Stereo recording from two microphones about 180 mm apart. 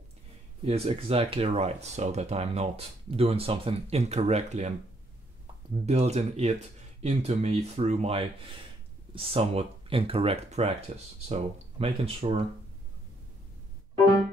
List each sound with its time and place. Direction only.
0.7 s speech: 35° right (ahead or behind)
5.9 s speech: 35° right (ahead or behind)